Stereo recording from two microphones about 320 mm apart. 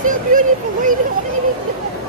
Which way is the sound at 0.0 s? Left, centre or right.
Right.